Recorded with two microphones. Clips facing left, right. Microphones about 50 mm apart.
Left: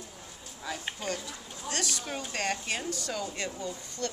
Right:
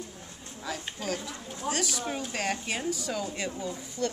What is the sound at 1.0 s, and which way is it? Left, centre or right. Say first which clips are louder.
A woman's voice: right 5 dB; centre.